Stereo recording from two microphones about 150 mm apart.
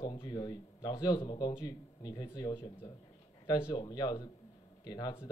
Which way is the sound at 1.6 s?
25° left (ahead or behind).